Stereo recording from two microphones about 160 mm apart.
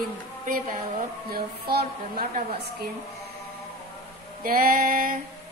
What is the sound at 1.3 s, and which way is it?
A woman's voice, 75° right (ahead or behind).